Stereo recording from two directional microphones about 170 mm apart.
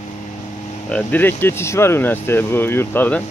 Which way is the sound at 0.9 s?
10° left (ahead or behind).